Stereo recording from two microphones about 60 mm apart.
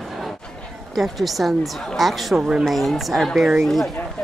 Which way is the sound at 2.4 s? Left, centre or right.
Centre.